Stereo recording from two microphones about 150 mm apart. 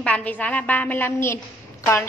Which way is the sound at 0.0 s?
10° left (ahead or behind).